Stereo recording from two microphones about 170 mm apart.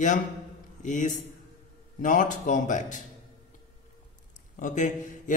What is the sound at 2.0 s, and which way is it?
Speech, 50° left (ahead or behind).